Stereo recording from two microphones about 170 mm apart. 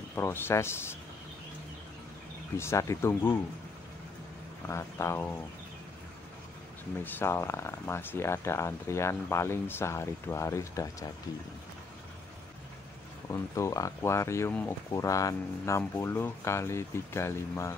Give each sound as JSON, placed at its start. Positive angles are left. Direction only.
{"t": 0.1, "sound": "speech", "side_deg": 15}
{"t": 2.5, "sound": "speech", "side_deg": 15}
{"t": 4.6, "sound": "speech", "side_deg": 15}
{"t": 7.0, "sound": "speech", "side_deg": 10}
{"t": 13.3, "sound": "speech", "side_deg": 20}